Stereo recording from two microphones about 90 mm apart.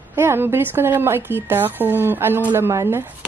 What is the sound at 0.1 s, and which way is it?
A woman's voice, 25° right (ahead or behind).